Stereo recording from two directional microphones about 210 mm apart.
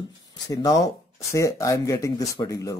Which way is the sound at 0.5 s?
15° left (ahead or behind).